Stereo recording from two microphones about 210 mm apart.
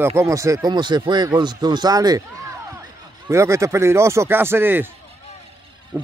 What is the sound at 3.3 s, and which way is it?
Speech, 15° right (ahead or behind).